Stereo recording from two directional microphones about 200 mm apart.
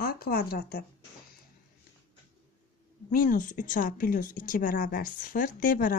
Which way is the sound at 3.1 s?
45° left (ahead or behind).